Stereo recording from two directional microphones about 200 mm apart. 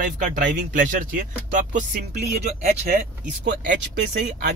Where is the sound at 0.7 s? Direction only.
40° right (ahead or behind).